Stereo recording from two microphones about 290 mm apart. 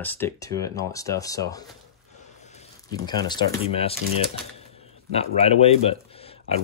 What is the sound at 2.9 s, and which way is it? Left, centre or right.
Speech, centre.